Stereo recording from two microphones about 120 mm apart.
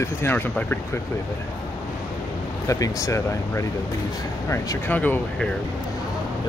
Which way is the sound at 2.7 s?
25° left (ahead or behind).